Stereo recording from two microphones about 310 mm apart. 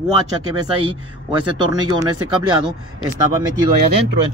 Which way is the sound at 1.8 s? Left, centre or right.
Centre.